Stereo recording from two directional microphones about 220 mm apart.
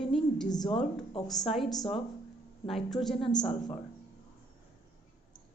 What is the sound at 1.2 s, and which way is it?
A woman's voice, centre (ahead or behind).